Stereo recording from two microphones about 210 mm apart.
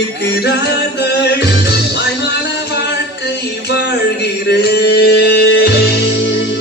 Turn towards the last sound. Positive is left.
turn(degrees=55)  # may be behind; listen again after turning